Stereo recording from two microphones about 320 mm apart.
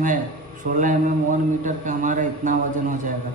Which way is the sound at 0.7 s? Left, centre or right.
Right.